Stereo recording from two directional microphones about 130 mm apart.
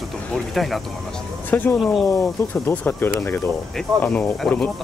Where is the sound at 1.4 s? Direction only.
15° left (ahead or behind).